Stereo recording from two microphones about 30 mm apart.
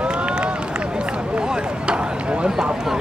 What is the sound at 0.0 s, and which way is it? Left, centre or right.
Run, right.